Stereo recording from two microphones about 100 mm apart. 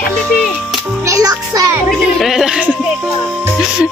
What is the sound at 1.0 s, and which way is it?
Music, 35° right (ahead or behind).